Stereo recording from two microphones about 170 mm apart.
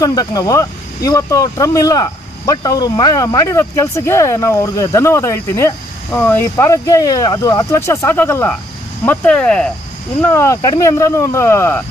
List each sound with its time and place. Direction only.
0.0 s speech: 20° left (ahead or behind); by 9.7 s 5° left (ahead or behind)
10.2 s speech: 15° left (ahead or behind)